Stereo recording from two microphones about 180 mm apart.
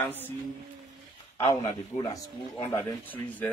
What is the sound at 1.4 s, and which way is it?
Speech, 30° left (ahead or behind).